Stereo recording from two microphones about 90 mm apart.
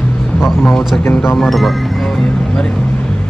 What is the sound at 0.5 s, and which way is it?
A man's voice, centre (ahead or behind).